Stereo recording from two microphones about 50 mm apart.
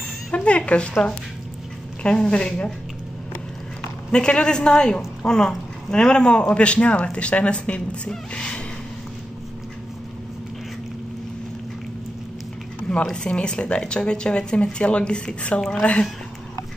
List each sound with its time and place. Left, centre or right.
0.3 s a sound: left
2.0 s speech: centre
4.1 s a woman's voice: centre
8.3 s music: left
13.1 s speech: centre